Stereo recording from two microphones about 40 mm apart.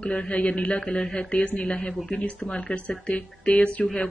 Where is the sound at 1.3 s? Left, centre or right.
Left.